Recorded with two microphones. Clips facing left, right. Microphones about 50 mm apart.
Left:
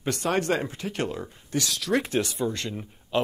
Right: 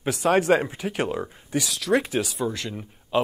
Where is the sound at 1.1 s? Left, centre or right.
Right.